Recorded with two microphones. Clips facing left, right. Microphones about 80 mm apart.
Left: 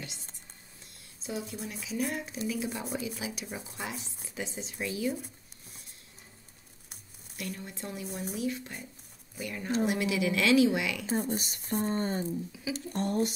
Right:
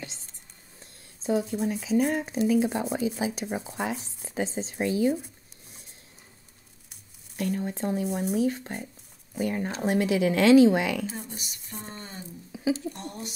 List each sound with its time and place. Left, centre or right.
1.2 s speech: right
7.3 s speech: right
11.1 s speech: left